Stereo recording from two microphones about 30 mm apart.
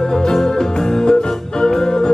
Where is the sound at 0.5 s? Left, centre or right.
Left.